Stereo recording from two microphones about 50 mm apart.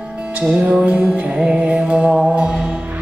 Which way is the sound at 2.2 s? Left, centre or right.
Right.